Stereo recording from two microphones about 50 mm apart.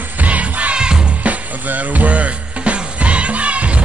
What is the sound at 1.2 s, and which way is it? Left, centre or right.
Music, right.